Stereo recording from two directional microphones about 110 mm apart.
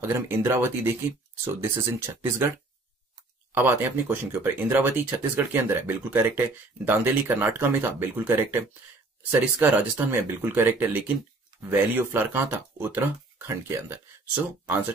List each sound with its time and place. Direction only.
0.0 s speech: 20° right (ahead or behind)
3.5 s speech: 20° right (ahead or behind)